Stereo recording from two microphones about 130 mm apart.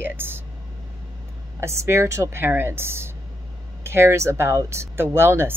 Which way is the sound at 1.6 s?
20° right (ahead or behind).